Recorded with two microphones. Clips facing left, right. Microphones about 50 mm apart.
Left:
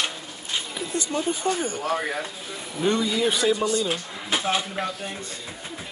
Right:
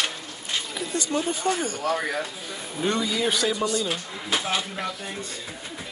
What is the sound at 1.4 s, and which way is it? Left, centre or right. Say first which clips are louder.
Speech: right 1 dB; centre.